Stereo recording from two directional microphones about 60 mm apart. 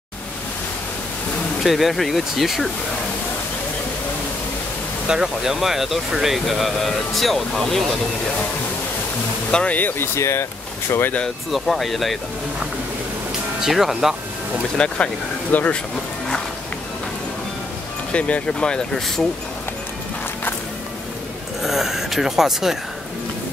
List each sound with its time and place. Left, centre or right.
1.6 s speech: centre
5.0 s speech: centre
9.5 s speech: centre
9.8 s speech: left
10.1 s speech: left
10.9 s speech: left
11.5 s speech: centre
13.6 s speech: centre
14.8 s speech: centre
18.1 s speech: centre
21.6 s speech: centre